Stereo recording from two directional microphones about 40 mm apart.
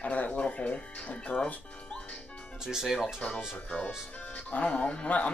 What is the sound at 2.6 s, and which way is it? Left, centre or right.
Speech, centre.